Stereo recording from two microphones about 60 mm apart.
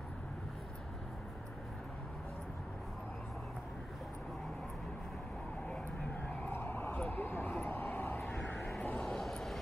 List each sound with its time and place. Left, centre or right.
6.5 s vehicle: left
7.6 s a sound: left
8.5 s vehicle: centre